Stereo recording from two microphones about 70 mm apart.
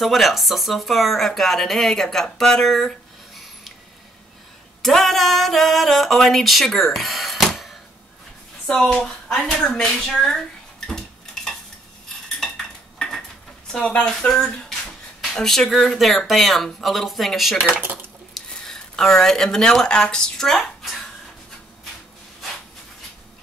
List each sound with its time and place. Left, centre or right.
0.0 s speech: centre
4.8 s speech: centre
8.6 s speech: centre
10.9 s cutlery: centre
13.7 s speech: centre
17.6 s speech: right
18.3 s speech: centre